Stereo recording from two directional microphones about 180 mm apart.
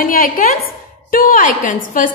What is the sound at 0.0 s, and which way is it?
A woman's voice, 50° left (ahead or behind).